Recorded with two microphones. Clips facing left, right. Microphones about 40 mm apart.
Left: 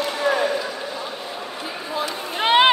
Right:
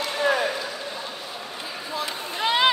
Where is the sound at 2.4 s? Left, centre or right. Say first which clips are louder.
Left 6 dB; left.